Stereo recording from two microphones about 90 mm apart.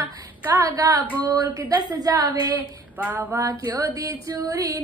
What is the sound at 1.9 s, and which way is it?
Speech, 45° right (ahead or behind).